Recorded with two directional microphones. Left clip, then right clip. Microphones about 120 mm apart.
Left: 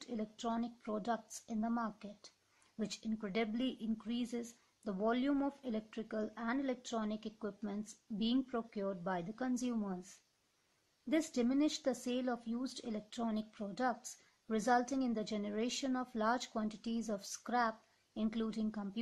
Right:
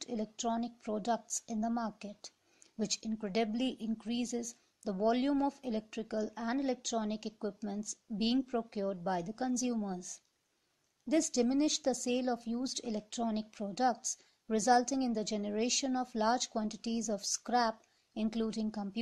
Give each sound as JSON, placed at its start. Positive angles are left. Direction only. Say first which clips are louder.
{"t": 0.0, "sound": "speech", "louder": "right 5 dB", "side_deg": -25}
{"t": 11.1, "sound": "speech", "louder": "right 4 dB", "side_deg": -25}